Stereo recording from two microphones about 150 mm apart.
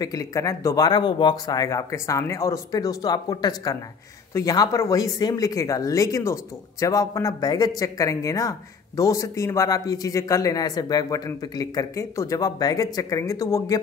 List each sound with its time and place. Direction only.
0.0 s speech: 25° left (ahead or behind)